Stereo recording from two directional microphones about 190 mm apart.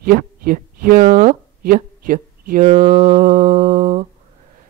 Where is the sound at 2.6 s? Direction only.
30° right (ahead or behind).